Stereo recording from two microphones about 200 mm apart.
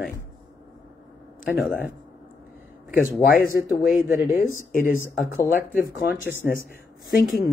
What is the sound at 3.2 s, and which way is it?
Speech, 45° left (ahead or behind).